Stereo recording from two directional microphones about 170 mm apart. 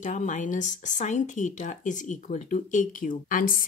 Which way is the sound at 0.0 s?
45° left (ahead or behind).